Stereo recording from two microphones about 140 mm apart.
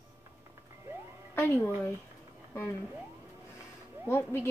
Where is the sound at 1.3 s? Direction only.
20° left (ahead or behind).